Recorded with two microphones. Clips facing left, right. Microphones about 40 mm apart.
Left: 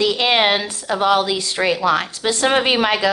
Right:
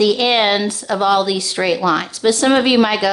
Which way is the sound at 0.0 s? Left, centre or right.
Left.